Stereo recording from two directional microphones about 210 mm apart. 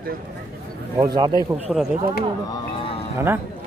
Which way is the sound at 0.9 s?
20° right (ahead or behind).